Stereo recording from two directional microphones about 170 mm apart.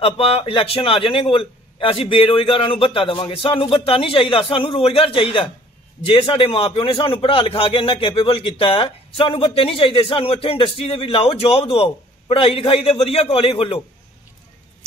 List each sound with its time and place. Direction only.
0.0 s a man's voice: 35° left (ahead or behind)